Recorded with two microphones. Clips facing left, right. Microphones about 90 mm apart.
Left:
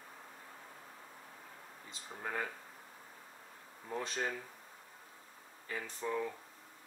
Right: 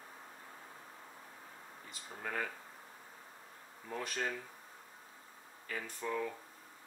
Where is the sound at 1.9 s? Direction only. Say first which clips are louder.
Even; 20° left (ahead or behind).